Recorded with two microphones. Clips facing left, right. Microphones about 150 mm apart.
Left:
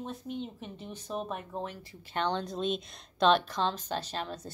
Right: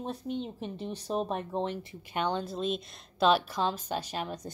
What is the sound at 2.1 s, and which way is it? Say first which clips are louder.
A woman's voice: right 1 dB; 5° right (ahead or behind).